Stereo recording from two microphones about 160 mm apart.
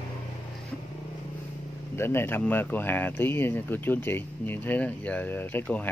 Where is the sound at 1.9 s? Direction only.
15° left (ahead or behind).